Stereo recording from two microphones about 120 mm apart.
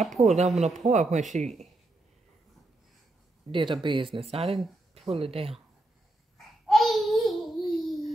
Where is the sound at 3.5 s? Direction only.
45° right (ahead or behind).